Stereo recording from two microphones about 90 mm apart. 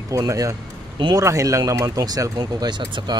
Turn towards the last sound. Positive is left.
turn(degrees=-55)  # may be behind; listen again after turning